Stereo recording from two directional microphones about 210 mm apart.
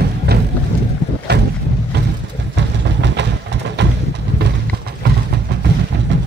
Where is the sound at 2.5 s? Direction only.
55° right (ahead or behind).